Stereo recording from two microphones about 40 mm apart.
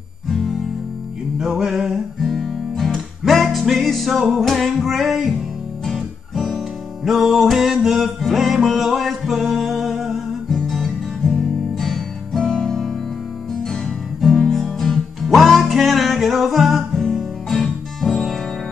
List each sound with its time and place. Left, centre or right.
0.3 s music: centre
1.4 s music: centre
2.2 s guitar: centre
3.5 s music: centre
5.9 s guitar: centre
7.1 s music: centre
14.2 s music: centre
14.6 s music: centre
15.2 s music: centre
16.9 s music: centre